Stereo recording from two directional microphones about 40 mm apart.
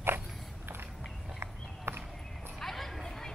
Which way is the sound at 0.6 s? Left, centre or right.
Right.